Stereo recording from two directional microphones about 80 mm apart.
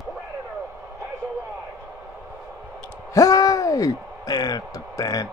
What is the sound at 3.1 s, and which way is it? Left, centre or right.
Speech, left.